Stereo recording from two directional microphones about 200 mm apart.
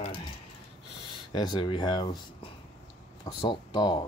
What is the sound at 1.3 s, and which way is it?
Speech, 20° left (ahead or behind).